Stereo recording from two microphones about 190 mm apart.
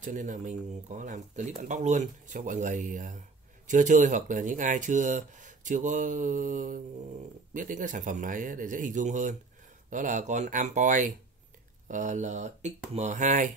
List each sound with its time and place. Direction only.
0.0 s speech: 40° right (ahead or behind)